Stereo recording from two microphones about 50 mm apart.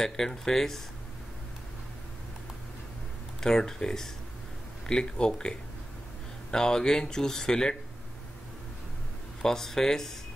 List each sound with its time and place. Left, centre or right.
0.0 s speech: centre
3.3 s speech: centre
9.4 s speech: centre